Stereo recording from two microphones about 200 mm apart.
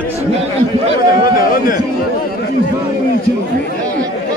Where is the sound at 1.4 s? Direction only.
45° left (ahead or behind).